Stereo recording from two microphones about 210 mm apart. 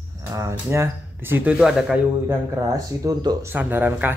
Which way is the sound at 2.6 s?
15° right (ahead or behind).